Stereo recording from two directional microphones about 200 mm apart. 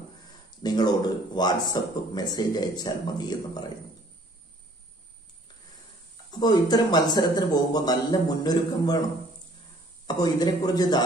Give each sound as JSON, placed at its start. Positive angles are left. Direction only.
{"t": 0.6, "sound": "speech", "side_deg": 20}
{"t": 6.3, "sound": "speech", "side_deg": 20}
{"t": 10.0, "sound": "speech", "side_deg": 20}